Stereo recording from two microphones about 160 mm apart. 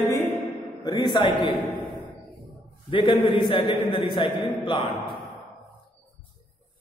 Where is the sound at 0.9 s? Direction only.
30° left (ahead or behind).